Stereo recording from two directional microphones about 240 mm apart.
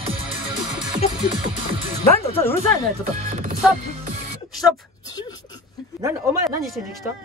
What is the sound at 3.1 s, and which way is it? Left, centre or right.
Speech, right.